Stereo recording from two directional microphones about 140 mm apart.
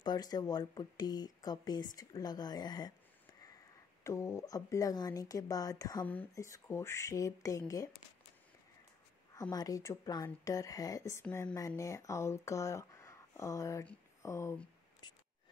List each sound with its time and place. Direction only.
0.0 s speech: 30° left (ahead or behind)
4.0 s speech: 20° left (ahead or behind)
9.3 s speech: 25° left (ahead or behind)